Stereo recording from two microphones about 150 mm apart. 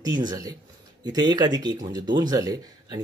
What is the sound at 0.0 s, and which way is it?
Speech, 25° right (ahead or behind).